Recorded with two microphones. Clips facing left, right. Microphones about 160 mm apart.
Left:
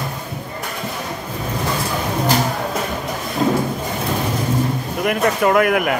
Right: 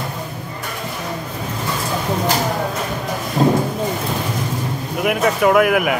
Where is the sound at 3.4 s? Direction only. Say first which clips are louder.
Right 3 dB; 30° right (ahead or behind).